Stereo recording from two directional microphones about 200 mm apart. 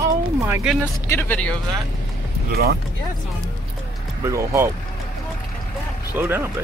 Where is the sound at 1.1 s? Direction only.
10° left (ahead or behind).